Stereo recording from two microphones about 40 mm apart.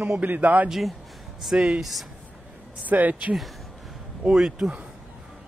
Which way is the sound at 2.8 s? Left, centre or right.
Right.